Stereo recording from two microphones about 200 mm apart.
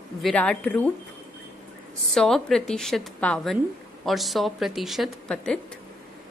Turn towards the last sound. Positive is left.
turn(degrees=0)  # may be behind; listen again after turning